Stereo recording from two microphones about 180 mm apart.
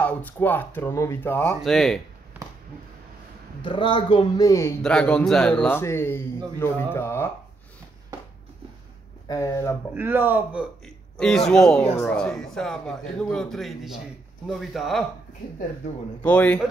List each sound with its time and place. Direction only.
0.0 s a man's voice: 10° left (ahead or behind)
1.6 s a man's voice: centre (ahead or behind)
3.6 s speech: 25° left (ahead or behind)
4.8 s a man's voice: 5° left (ahead or behind)
9.3 s a man's voice: 20° left (ahead or behind)
9.9 s a man's voice: 10° right (ahead or behind)
11.1 s a man's voice: centre (ahead or behind)
16.2 s a man's voice: 10° left (ahead or behind)